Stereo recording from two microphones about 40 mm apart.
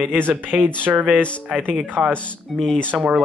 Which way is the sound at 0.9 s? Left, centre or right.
Right.